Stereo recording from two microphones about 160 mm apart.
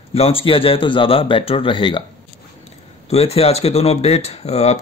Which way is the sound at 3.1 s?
40° left (ahead or behind).